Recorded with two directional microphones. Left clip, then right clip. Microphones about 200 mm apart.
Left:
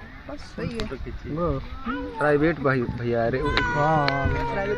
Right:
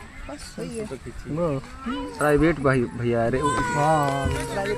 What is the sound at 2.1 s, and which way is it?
Speech, 60° right (ahead or behind).